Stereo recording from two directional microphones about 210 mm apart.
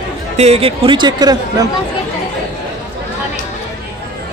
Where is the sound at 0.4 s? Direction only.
30° right (ahead or behind).